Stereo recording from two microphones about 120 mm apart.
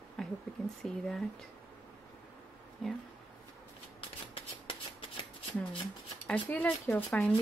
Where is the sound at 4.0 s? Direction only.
50° left (ahead or behind).